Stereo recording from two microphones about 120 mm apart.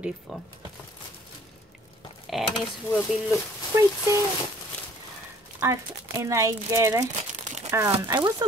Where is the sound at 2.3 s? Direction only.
5° right (ahead or behind).